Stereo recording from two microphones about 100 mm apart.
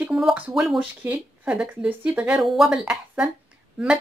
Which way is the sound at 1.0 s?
15° right (ahead or behind).